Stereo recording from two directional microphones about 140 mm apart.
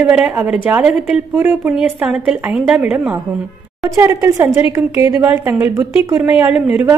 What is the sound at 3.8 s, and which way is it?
A woman's voice, 20° right (ahead or behind).